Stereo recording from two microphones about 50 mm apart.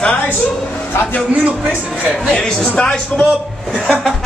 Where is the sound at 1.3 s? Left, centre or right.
Right.